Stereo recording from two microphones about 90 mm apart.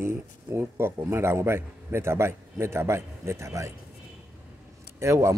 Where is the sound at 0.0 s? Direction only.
25° right (ahead or behind).